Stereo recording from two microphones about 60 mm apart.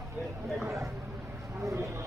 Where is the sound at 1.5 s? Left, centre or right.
Right.